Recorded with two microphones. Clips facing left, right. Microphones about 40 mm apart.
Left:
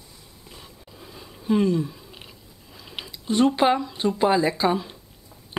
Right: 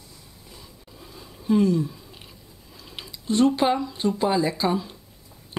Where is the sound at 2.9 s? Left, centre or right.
Centre.